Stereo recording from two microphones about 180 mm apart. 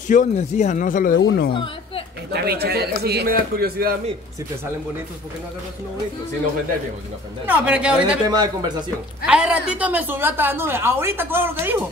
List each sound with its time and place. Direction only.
0.1 s speech: 45° left (ahead or behind); by 1.5 s 65° left (ahead or behind)
1.5 s a sound: 30° left (ahead or behind)
2.3 s speech: 60° right (ahead or behind)
7.4 s speech: 10° right (ahead or behind)
8.3 s speech: 25° right (ahead or behind)
9.2 s a woman's voice: 5° right (ahead or behind)